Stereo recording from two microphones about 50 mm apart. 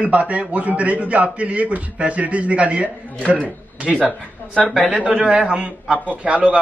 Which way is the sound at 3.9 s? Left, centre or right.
Centre.